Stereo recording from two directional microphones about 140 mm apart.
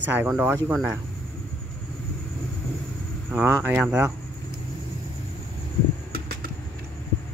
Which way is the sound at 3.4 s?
10° right (ahead or behind).